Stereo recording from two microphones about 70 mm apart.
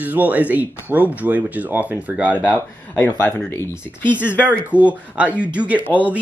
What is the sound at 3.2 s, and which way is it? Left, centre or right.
Speech, left.